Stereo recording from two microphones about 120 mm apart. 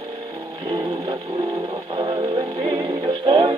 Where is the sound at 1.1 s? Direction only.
40° right (ahead or behind).